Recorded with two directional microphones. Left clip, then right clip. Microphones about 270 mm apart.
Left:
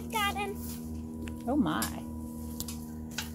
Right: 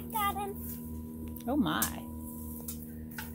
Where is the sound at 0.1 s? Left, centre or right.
Centre.